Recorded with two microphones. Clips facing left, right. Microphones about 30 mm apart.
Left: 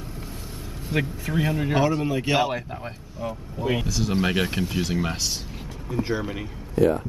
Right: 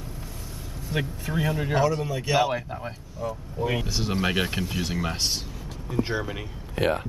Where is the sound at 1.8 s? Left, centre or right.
Left.